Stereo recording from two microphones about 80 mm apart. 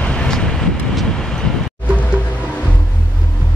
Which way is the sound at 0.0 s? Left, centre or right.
Centre.